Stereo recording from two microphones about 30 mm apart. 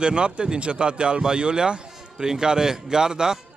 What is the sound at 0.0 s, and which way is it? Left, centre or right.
Speech, right.